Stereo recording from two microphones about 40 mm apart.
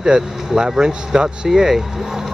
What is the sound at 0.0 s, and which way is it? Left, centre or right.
Speech, centre.